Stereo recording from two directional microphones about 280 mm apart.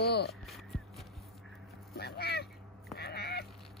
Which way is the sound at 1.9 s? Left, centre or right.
Left.